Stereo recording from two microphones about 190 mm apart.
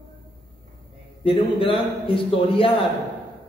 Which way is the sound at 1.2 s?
30° left (ahead or behind).